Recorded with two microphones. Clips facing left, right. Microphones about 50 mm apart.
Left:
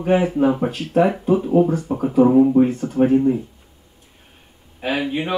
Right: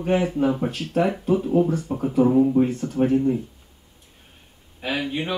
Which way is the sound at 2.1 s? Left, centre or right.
Centre.